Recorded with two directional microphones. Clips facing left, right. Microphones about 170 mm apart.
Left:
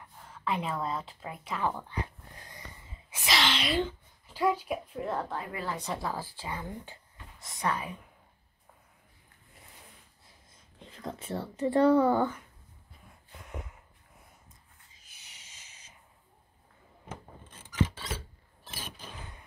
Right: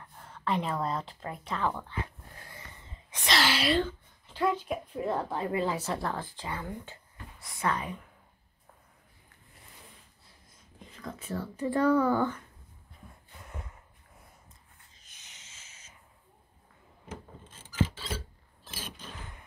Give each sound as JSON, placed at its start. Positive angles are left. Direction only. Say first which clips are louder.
{"t": 0.2, "sound": "speech", "louder": "right 2 dB", "side_deg": 0}
{"t": 2.4, "sound": "snort", "louder": "left 1 dB", "side_deg": 15}
{"t": 3.1, "sound": "a sound", "louder": "right 1 dB", "side_deg": 5}
{"t": 4.3, "sound": "speech", "louder": "left 1 dB", "side_deg": 5}
{"t": 5.4, "sound": "a woman's voice", "louder": "right 7 dB", "side_deg": -25}
{"t": 5.8, "sound": "speech", "louder": "right 2 dB", "side_deg": 0}
{"t": 10.8, "sound": "speech", "louder": "left 2 dB", "side_deg": 30}
{"t": 15.0, "sound": "snort", "louder": "right 1 dB", "side_deg": 10}